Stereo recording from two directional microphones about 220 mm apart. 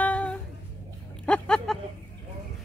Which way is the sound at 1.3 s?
5° left (ahead or behind).